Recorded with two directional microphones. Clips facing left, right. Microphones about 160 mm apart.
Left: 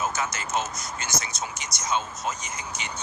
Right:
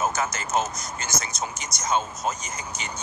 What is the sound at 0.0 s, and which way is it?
Speech, 45° right (ahead or behind).